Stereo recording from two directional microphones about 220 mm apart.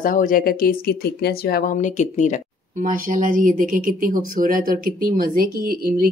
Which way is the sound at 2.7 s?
35° right (ahead or behind).